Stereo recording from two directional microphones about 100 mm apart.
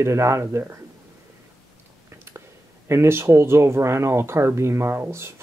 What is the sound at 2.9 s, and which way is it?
Speech, 25° right (ahead or behind).